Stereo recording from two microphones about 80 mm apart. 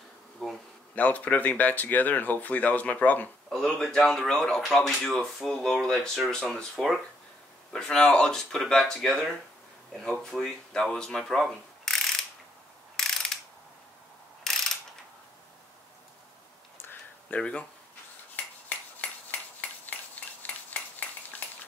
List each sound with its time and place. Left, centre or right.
0.4 s bee: centre
0.9 s speech: centre
3.4 s speech: centre
12.9 s ratchet: centre
14.5 s pulleys: centre
16.7 s a sound: left
17.4 s speech: centre